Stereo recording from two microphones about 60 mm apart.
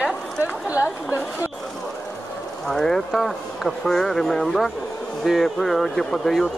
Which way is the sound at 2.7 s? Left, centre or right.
Centre.